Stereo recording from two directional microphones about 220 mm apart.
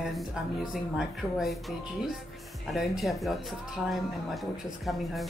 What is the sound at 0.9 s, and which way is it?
Speech, centre (ahead or behind).